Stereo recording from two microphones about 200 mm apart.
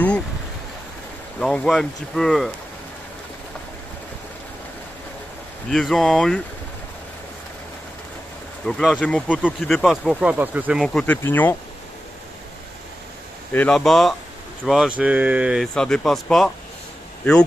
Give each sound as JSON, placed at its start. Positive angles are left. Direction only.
{"t": 1.4, "sound": "speech", "side_deg": 5}
{"t": 5.7, "sound": "speech", "side_deg": 0}
{"t": 8.6, "sound": "speech", "side_deg": 0}
{"t": 13.5, "sound": "speech", "side_deg": 5}